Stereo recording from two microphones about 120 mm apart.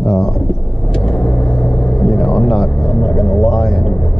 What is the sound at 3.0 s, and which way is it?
Speech, 5° left (ahead or behind).